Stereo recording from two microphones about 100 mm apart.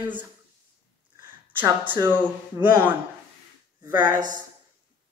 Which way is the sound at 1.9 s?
20° right (ahead or behind).